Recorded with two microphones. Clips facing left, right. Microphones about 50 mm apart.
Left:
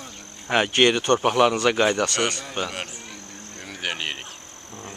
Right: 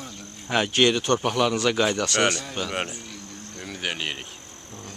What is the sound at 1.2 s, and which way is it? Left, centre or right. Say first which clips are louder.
Speech: left 4 dB; left.